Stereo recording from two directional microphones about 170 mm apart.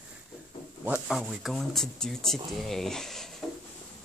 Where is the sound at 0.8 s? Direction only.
5° right (ahead or behind).